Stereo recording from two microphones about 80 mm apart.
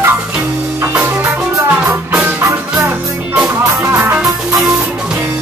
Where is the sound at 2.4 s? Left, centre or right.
Right.